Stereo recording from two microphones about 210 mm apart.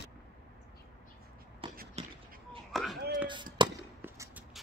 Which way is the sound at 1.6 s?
25° right (ahead or behind).